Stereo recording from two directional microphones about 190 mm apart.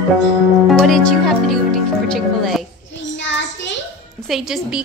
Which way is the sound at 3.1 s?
70° left (ahead or behind).